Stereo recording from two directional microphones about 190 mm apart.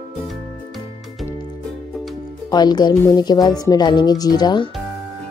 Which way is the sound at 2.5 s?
20° left (ahead or behind).